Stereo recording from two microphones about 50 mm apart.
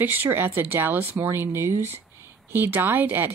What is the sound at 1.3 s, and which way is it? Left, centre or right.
Speech, right.